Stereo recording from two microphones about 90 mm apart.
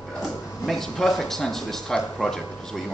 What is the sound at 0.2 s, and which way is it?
A man's voice, 5° left (ahead or behind).